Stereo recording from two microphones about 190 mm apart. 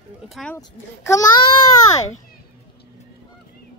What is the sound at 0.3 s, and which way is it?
Speech, centre (ahead or behind).